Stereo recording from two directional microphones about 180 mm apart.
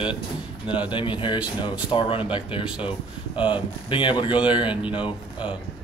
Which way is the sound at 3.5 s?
25° left (ahead or behind).